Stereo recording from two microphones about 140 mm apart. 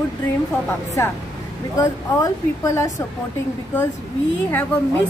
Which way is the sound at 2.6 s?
20° left (ahead or behind).